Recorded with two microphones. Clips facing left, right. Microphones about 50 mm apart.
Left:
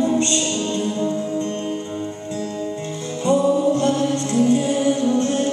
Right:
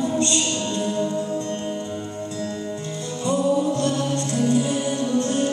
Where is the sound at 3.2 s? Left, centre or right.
Left.